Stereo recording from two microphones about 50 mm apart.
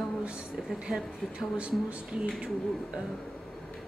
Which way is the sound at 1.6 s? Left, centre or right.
Right.